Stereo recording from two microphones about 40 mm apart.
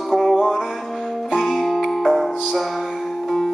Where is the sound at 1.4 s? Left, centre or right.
Centre.